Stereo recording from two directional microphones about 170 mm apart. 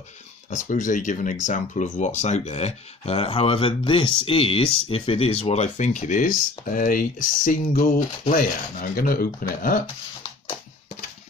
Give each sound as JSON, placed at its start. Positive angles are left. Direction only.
{"t": 0.7, "sound": "speech", "side_deg": 50}